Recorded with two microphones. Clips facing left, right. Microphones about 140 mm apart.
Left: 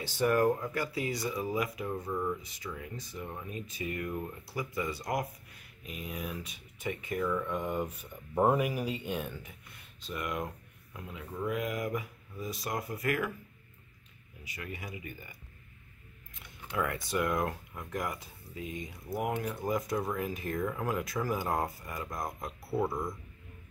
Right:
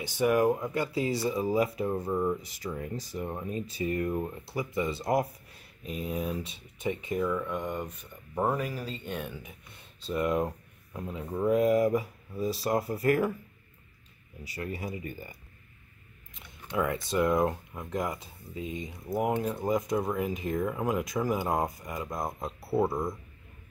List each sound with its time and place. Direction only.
0.0 s speech: 15° right (ahead or behind)
7.2 s speech: 5° right (ahead or behind)
9.4 s speech: 25° right (ahead or behind)
14.4 s speech: 35° right (ahead or behind)
16.3 s speech: 20° right (ahead or behind)